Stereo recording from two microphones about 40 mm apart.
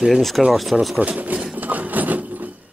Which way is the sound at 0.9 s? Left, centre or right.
Right.